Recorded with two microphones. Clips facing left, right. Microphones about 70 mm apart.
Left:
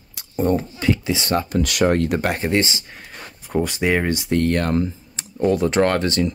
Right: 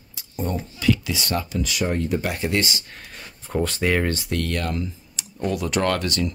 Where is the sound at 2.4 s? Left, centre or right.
Left.